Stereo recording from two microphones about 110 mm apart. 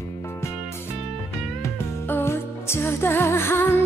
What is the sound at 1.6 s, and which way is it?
Music, 20° left (ahead or behind).